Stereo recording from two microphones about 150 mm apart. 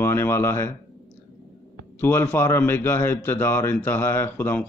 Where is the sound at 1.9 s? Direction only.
15° left (ahead or behind).